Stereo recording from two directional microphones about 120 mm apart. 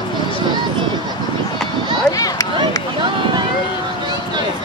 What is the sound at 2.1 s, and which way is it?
Speech, 30° left (ahead or behind).